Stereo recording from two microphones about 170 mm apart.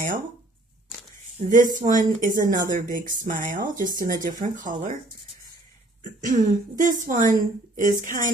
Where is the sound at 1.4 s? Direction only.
40° right (ahead or behind).